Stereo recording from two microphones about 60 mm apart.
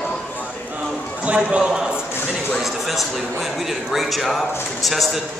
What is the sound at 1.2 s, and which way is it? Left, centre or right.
Speech, centre.